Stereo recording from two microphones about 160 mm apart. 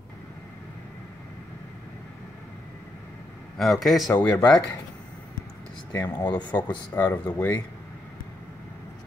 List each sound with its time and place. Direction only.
3.5 s a man's voice: centre (ahead or behind)
5.9 s speech: 25° left (ahead or behind)
7.0 s speech: 15° left (ahead or behind)